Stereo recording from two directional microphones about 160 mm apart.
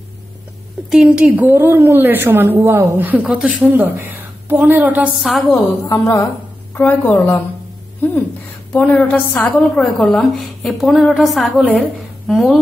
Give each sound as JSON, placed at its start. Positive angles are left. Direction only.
{"t": 0.8, "sound": "a woman's voice", "side_deg": -5}
{"t": 5.9, "sound": "a woman's voice", "side_deg": 20}
{"t": 8.7, "sound": "a woman's voice", "side_deg": 10}